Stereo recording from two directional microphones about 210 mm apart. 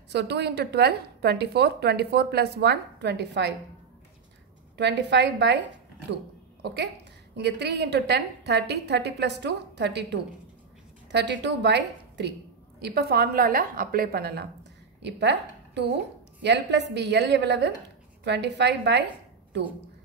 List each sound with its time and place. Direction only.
0.1 s a woman's voice: 55° right (ahead or behind)
4.7 s a woman's voice: 55° right (ahead or behind)
6.6 s a woman's voice: 55° right (ahead or behind)